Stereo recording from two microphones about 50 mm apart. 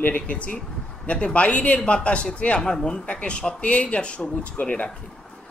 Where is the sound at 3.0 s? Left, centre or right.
Left.